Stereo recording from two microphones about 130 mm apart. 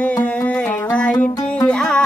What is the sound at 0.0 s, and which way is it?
Music, 10° left (ahead or behind).